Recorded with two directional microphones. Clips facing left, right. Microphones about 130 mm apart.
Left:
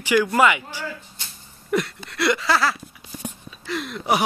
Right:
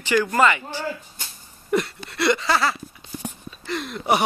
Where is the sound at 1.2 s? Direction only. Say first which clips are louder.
Right 2 dB; 45° right (ahead or behind).